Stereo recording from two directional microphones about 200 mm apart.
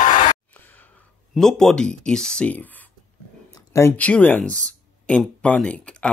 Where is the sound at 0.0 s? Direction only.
40° left (ahead or behind).